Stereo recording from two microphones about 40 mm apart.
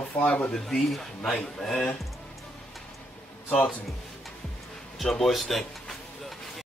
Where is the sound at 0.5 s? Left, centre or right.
Centre.